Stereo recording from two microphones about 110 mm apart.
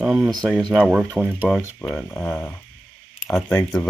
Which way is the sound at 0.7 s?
15° right (ahead or behind).